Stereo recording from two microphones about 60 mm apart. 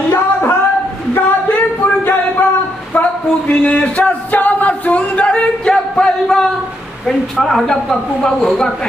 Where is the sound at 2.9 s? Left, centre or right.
Left.